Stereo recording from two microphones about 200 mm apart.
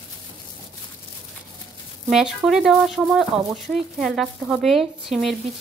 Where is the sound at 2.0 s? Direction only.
Centre (ahead or behind).